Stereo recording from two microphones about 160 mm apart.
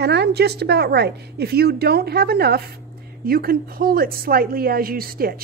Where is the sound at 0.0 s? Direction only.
90° right.